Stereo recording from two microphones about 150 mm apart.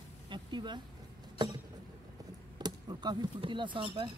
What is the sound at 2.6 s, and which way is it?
Speech, 30° right (ahead or behind).